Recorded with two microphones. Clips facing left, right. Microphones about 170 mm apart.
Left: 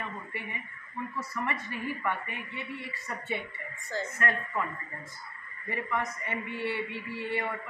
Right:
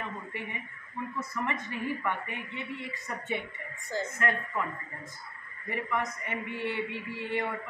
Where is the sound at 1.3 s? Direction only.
20° right (ahead or behind).